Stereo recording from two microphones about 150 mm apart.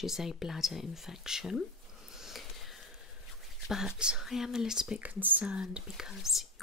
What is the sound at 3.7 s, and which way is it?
Speech, 5° right (ahead or behind).